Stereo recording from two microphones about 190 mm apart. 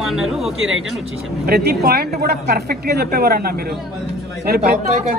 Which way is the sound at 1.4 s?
55° right (ahead or behind).